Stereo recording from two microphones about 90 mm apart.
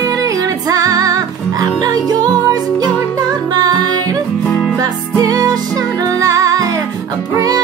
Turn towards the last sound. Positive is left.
turn(degrees=-45)  # may be behind; listen again after turning